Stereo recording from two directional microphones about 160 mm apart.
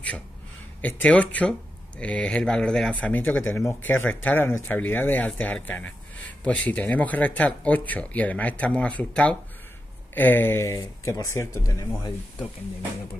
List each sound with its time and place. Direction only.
0.7 s speech: 10° left (ahead or behind)